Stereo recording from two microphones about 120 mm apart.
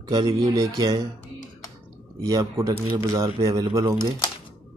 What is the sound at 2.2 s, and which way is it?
Speech, 30° right (ahead or behind).